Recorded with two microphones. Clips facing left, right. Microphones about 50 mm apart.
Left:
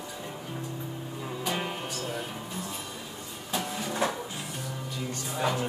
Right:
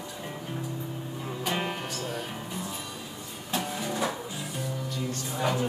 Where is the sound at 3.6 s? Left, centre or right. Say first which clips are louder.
Right 1 dB; right.